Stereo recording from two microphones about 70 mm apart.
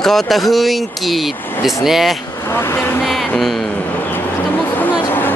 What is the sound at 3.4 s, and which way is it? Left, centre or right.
Speech, centre.